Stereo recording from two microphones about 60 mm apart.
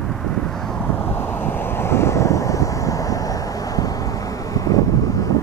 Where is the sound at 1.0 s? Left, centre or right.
Left.